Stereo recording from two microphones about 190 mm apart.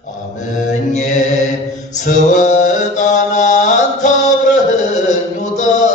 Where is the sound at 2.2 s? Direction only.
40° left (ahead or behind).